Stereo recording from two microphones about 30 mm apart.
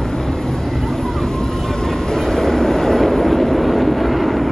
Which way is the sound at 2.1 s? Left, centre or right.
Centre.